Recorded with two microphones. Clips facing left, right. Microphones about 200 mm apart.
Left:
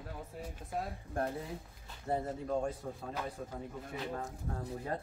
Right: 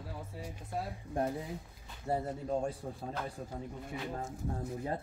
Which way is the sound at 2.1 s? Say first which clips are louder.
Right 1 dB; 25° right (ahead or behind).